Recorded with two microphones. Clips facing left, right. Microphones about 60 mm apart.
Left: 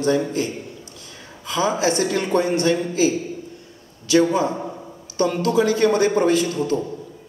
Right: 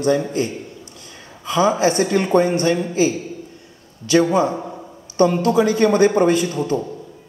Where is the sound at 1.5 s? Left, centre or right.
Right.